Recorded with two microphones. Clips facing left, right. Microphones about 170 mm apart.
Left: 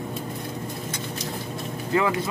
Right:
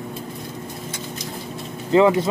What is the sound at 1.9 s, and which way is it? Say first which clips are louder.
Speech: right 8 dB; 25° right (ahead or behind).